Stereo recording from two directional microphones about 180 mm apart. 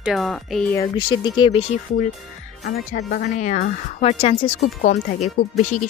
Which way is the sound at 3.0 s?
65° left (ahead or behind).